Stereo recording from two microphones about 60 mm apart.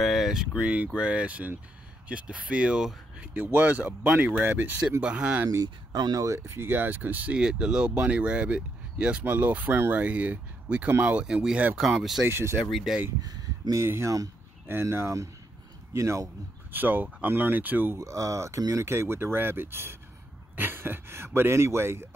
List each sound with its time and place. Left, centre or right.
0.0 s a sound: centre
0.9 s speech: centre
3.5 s speech: right
4.5 s speech: right
5.0 s speech: centre
6.1 s speech: right
7.3 s speech: centre
10.9 s speech: right
11.1 s speech: centre
12.3 s speech: right
13.2 s a sound: right
13.7 s speech: right
16.7 s speech: right
17.9 s speech: right